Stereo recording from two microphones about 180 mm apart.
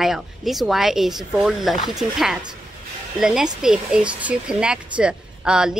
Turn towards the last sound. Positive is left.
turn(degrees=-5)  # may be behind; listen again after turning